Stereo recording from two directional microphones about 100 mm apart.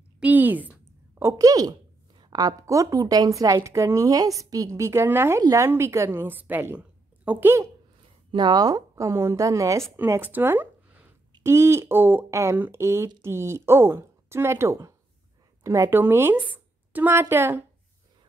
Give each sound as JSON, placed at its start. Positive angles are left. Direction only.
{"t": 0.2, "sound": "a woman's voice", "side_deg": -15}
{"t": 1.3, "sound": "a sound", "side_deg": -35}
{"t": 2.6, "sound": "speech", "side_deg": -35}
{"t": 8.3, "sound": "a woman's voice", "side_deg": -45}